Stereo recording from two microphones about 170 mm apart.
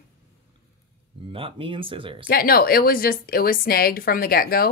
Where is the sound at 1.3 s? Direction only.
30° right (ahead or behind).